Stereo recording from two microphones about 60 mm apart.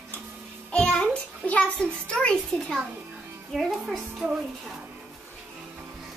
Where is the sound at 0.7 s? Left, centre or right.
Centre.